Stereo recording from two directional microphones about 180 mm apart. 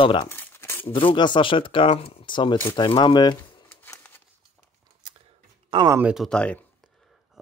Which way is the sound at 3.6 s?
10° left (ahead or behind).